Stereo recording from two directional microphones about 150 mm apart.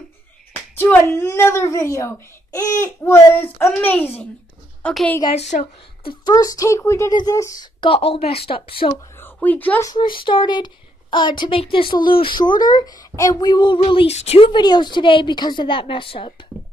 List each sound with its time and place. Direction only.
0.5 s speech: 15° left (ahead or behind)
5.3 s a woman's voice: 55° left (ahead or behind)
6.0 s speech: 25° left (ahead or behind)
9.1 s speech: 15° left (ahead or behind)
9.8 s a woman's voice: 30° left (ahead or behind)